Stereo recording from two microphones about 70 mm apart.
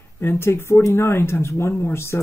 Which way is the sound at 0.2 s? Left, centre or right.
Left.